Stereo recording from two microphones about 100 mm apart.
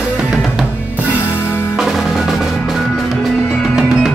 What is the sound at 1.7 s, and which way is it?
Percussion, centre (ahead or behind).